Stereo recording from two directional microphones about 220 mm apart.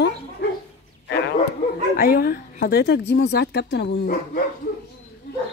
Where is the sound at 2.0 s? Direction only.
40° left (ahead or behind).